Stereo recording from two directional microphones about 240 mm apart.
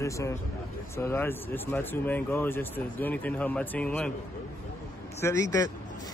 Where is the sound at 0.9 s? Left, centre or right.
Centre.